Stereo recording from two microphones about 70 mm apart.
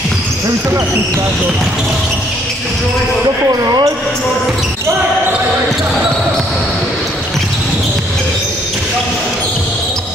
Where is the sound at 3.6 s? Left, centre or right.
Right.